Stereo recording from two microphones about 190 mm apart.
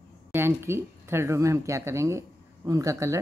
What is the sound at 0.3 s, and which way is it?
Speech, 15° right (ahead or behind).